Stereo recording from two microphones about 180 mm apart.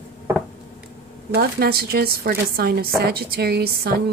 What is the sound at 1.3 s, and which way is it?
A woman's voice, 60° right (ahead or behind).